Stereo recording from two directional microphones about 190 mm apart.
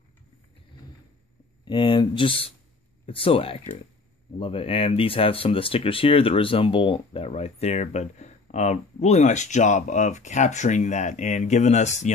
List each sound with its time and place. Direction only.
1.6 s speech: 25° left (ahead or behind)